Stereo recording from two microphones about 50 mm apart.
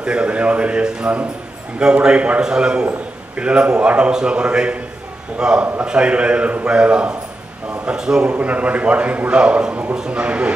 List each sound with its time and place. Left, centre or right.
0.0 s a man's voice: right
8.3 s a man's voice: right